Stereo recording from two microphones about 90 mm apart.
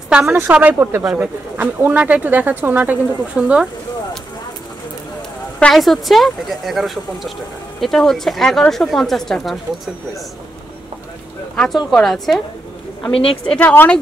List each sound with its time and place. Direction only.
0.3 s speech: 20° right (ahead or behind)
5.6 s a woman's voice: 5° left (ahead or behind)
11.5 s a woman's voice: 5° left (ahead or behind)
13.1 s a woman's voice: 90° left
13.5 s speech: 15° left (ahead or behind)